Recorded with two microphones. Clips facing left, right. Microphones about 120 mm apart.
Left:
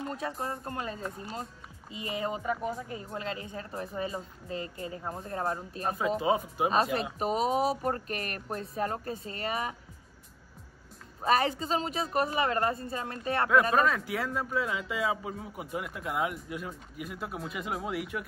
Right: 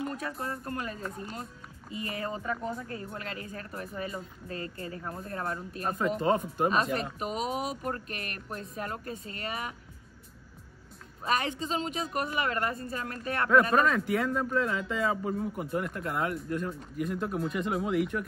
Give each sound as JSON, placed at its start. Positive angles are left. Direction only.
{"t": 0.1, "sound": "speech", "side_deg": 30}
{"t": 3.1, "sound": "speech", "side_deg": 25}
{"t": 5.9, "sound": "a man's voice", "side_deg": 5}
{"t": 7.2, "sound": "speech", "side_deg": 35}
{"t": 11.2, "sound": "speech", "side_deg": 35}
{"t": 13.5, "sound": "a man's voice", "side_deg": 0}